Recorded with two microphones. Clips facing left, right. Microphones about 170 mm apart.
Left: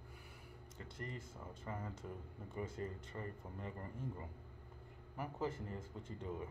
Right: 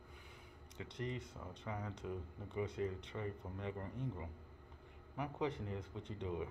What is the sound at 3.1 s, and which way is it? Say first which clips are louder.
Speech: right 3 dB; 5° left (ahead or behind).